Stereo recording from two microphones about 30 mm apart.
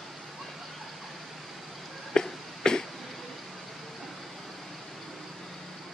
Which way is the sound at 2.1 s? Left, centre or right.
Left.